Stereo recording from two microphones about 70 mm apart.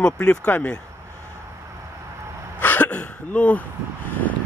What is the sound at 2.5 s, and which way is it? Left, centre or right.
Throat clearing, left.